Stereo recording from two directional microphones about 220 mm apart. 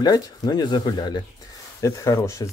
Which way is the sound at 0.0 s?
15° left (ahead or behind).